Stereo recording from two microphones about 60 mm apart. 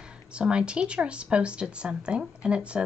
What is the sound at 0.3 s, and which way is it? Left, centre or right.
Speech, centre.